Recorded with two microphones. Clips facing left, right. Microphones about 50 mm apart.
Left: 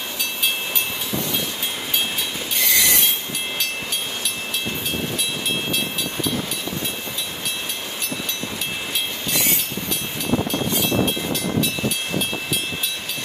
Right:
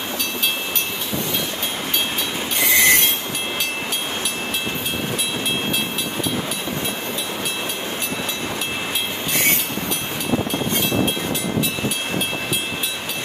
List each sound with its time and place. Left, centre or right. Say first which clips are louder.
2.6 s train: right 5 dB; right